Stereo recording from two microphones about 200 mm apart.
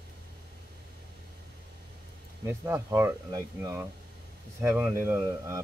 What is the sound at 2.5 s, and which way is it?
Speech, 10° right (ahead or behind).